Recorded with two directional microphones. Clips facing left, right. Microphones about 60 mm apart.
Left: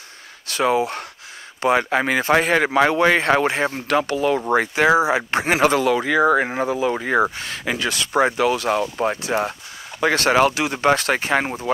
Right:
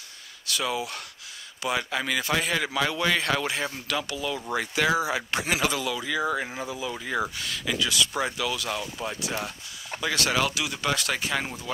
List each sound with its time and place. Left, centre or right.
0.5 s speech: left
4.7 s speech: left